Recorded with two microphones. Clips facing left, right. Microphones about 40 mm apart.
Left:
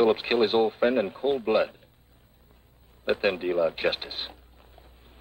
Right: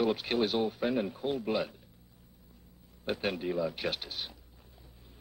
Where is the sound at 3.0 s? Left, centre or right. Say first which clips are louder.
Left 8 dB; left.